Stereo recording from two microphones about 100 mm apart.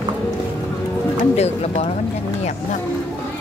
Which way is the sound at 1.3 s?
90° left.